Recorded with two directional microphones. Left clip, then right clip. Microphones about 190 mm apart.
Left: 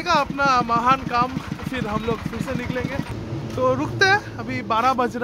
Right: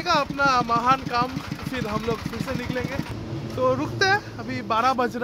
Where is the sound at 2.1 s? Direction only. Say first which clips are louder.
Left 2 dB; 35° right (ahead or behind).